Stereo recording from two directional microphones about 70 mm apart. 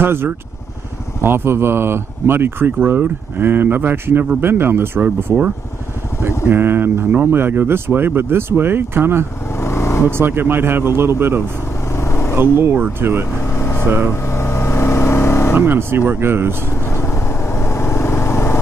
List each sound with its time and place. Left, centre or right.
0.0 s speech: right
6.2 s speech: right
9.6 s vehicle: left
10.0 s speech: right
11.9 s vehicle: left
12.4 s speech: right
13.6 s vehicle: left
13.8 s speech: right
14.2 s vehicle: left
15.5 s speech: right
16.9 s vehicle: left